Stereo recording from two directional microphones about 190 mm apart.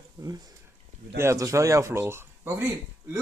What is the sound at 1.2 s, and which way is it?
A man's voice, 15° right (ahead or behind).